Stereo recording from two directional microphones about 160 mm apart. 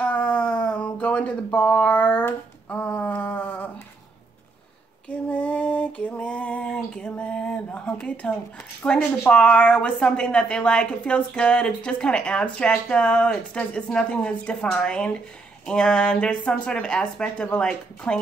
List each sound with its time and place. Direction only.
0.0 s cat: 10° left (ahead or behind)
5.3 s a sound: 10° left (ahead or behind)
8.8 s speech: 5° left (ahead or behind)